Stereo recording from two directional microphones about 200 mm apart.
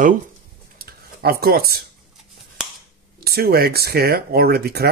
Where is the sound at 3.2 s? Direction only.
50° right (ahead or behind).